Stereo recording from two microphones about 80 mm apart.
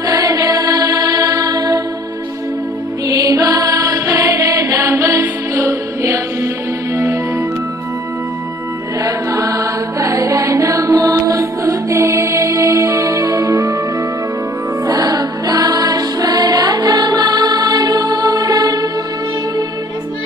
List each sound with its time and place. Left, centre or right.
0.0 s music: right
3.1 s music: right
9.0 s music: right
14.9 s music: right